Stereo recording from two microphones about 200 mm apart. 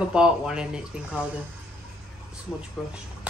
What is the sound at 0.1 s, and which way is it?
Speech, 5° right (ahead or behind).